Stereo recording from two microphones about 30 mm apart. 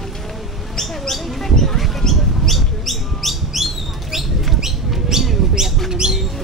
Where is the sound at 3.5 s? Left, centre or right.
Centre.